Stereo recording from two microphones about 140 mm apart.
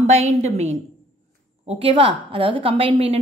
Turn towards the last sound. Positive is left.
turn(degrees=-45)  # may be behind; listen again after turning